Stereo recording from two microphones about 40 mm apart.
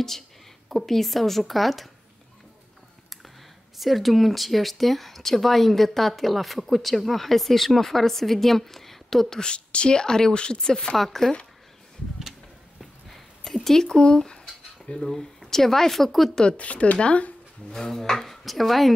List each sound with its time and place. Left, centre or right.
0.7 s speech: centre
3.7 s speech: centre
9.4 s speech: left
13.1 s a sound: centre
13.8 s speech: left; by 16.3 s centre
16.5 s speech: left
17.6 s speech: centre